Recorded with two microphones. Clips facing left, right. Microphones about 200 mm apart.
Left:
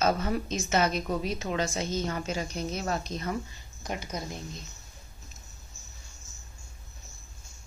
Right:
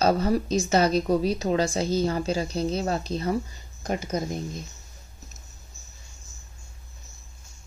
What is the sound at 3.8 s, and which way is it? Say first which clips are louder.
Speech: right 7 dB; 50° right (ahead or behind).